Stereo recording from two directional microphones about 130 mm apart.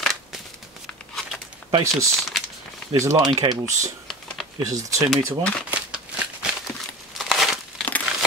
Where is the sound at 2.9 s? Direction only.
25° right (ahead or behind).